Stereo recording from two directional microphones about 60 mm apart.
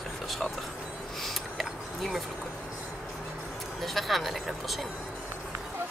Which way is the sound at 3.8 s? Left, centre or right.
Centre.